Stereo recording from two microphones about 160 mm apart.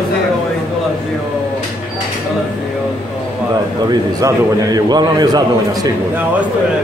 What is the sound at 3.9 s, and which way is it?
A man's voice, 25° right (ahead or behind).